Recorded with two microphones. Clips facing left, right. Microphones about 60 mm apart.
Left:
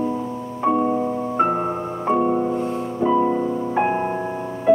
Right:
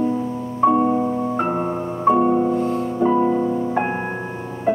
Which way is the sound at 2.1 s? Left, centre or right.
Centre.